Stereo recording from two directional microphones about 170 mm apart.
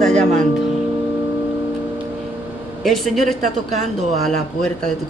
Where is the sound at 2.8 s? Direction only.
Centre (ahead or behind).